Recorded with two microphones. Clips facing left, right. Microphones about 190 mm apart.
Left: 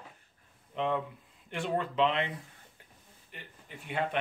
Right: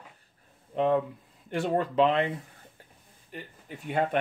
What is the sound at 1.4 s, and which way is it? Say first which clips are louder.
Speech: right 5 dB; 40° right (ahead or behind).